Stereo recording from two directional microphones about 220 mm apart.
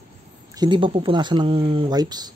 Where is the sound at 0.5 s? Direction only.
20° right (ahead or behind).